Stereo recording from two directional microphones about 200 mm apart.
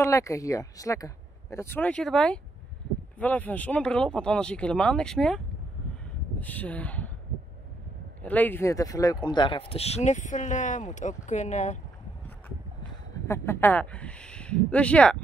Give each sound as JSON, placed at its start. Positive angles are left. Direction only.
{"t": 0.0, "sound": "speech", "side_deg": 15}
{"t": 6.4, "sound": "speech", "side_deg": 10}
{"t": 8.2, "sound": "speech", "side_deg": 10}
{"t": 13.3, "sound": "speech", "side_deg": 10}